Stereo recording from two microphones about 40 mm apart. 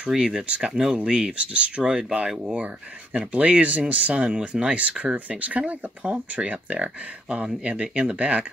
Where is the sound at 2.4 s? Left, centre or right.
Right.